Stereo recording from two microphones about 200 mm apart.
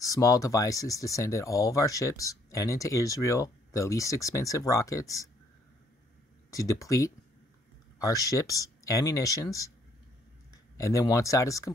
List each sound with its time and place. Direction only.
0.0 s speech: 15° left (ahead or behind)
6.5 s speech: 15° left (ahead or behind)
10.8 s speech: 15° left (ahead or behind)